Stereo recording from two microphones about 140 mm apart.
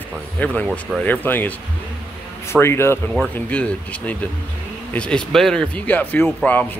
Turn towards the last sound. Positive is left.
turn(degrees=15)  # may be behind; listen again after turning